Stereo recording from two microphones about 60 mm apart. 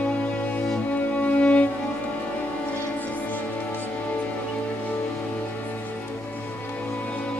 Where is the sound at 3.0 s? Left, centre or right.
Left.